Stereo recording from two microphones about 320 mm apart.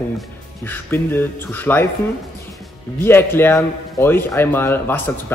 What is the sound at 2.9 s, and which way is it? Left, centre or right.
Speech, centre.